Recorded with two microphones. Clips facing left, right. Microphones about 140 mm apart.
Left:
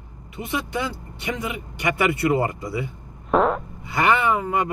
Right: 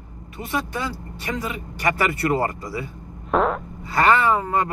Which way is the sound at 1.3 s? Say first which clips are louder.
Right 1 dB; 20° left (ahead or behind).